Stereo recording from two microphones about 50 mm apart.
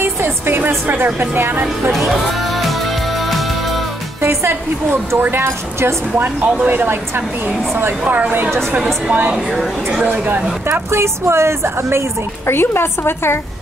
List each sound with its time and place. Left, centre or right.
0.0 s a woman's voice: right
1.9 s speech: centre
3.2 s music: centre
4.2 s a woman's voice: right
4.9 s a woman's voice: right
6.1 s speech: right
6.9 s a woman's voice: right
10.0 s speech: right
10.7 s a woman's voice: right
12.4 s a woman's voice: left